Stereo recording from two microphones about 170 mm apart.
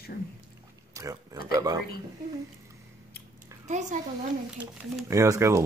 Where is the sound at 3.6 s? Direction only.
45° right (ahead or behind).